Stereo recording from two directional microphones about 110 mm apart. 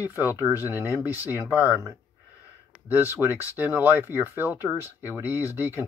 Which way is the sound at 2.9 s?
20° right (ahead or behind).